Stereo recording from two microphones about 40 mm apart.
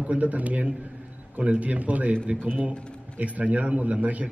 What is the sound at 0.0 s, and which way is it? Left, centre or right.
A man's voice, right.